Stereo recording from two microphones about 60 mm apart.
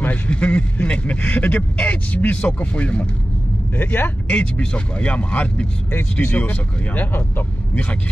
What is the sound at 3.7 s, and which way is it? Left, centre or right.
Speech, left.